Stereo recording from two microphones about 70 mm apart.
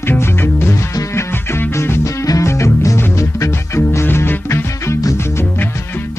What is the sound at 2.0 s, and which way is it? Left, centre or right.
Music, left.